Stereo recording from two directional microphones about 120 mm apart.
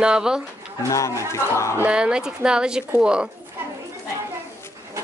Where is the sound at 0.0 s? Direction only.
5° right (ahead or behind).